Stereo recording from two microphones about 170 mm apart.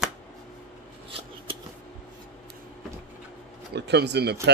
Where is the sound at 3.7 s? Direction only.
80° right.